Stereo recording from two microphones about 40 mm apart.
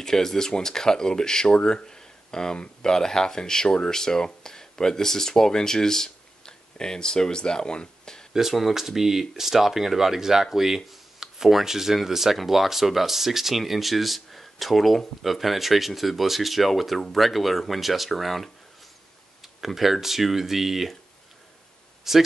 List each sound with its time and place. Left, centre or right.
0.0 s speech: centre
8.3 s speech: centre
22.1 s speech: centre